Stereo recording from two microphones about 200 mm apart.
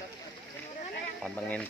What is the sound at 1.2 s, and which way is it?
Speech, 5° left (ahead or behind).